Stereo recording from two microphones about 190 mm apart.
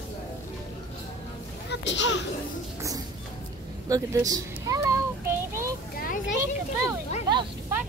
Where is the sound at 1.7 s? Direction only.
70° left (ahead or behind).